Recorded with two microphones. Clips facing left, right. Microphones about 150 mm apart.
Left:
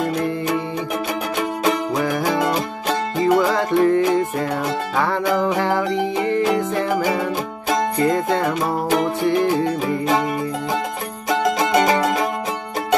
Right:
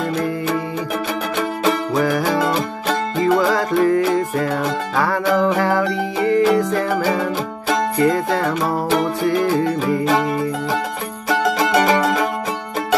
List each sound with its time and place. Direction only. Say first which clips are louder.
1.6 s music: right 2 dB; 20° left (ahead or behind)